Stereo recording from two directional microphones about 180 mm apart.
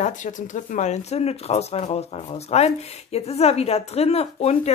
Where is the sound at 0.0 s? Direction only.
45° left (ahead or behind).